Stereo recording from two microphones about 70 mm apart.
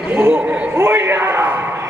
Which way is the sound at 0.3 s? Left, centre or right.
Centre.